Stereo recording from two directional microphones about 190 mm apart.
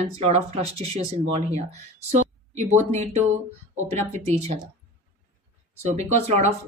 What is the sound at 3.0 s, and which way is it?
A woman's voice, 35° right (ahead or behind).